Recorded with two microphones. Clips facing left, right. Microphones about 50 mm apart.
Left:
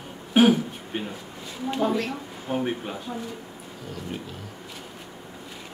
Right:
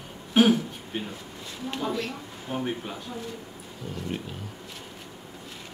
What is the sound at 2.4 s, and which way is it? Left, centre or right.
Speech, centre.